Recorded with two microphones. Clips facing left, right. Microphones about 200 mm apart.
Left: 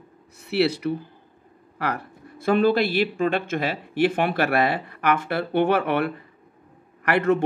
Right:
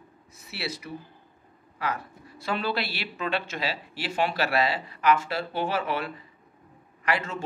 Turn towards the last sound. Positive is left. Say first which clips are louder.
# left 9 dB
turn(degrees=60)  # may be behind; listen again after turning